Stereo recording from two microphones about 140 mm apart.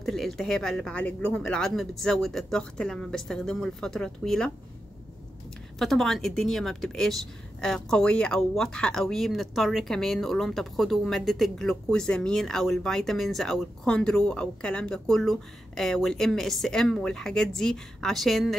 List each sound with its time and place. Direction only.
0.0 s speech: centre (ahead or behind)
5.8 s speech: centre (ahead or behind)